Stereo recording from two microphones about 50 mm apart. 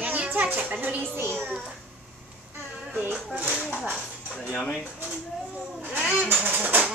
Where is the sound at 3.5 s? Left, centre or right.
Centre.